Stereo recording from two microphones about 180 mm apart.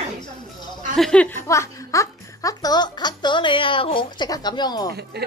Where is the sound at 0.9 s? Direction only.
5° left (ahead or behind); by 4.9 s 25° left (ahead or behind).